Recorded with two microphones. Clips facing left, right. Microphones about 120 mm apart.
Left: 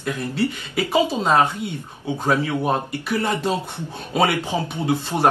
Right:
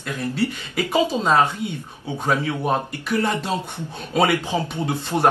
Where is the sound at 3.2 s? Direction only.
15° left (ahead or behind).